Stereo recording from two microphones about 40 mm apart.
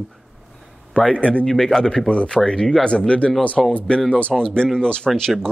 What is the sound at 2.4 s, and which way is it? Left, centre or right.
Speech, centre.